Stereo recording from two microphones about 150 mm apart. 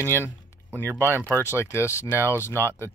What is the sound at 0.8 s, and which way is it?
Speech, 15° right (ahead or behind).